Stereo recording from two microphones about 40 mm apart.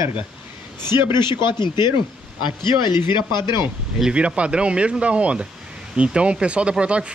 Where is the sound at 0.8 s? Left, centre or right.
Right.